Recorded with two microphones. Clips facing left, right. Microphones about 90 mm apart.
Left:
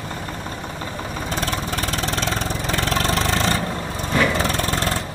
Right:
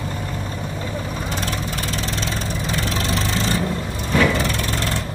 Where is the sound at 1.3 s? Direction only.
45° left (ahead or behind).